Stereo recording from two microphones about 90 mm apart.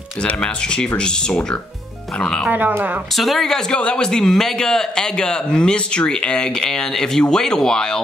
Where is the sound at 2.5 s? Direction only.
20° right (ahead or behind).